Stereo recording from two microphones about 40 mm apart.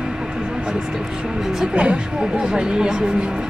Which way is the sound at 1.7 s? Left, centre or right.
Right.